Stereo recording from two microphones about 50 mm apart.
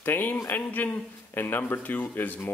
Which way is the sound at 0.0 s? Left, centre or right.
Left.